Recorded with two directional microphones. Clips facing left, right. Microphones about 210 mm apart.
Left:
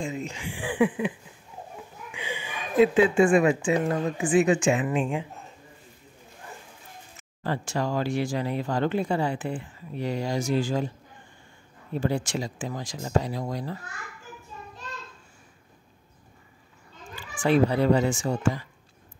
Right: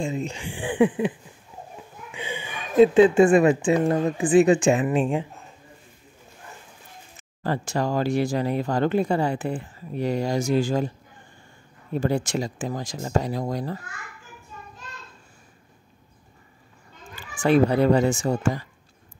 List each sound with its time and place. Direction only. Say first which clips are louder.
0.0 s speech: right 4 dB; 30° right (ahead or behind)
2.1 s a woman's voice: right 2 dB; 30° right (ahead or behind)
7.2 s speech: right 3 dB; 40° right (ahead or behind)
12.0 s speech: right 3 dB; 45° right (ahead or behind)
17.4 s speech: right 3 dB; 45° right (ahead or behind)